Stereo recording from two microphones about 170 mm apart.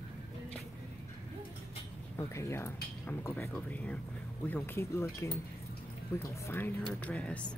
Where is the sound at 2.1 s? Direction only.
15° left (ahead or behind).